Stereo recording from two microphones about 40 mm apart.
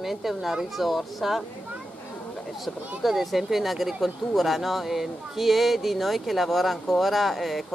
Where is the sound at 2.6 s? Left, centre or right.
Centre.